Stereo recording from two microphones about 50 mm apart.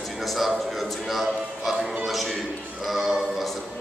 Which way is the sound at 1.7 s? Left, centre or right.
Centre.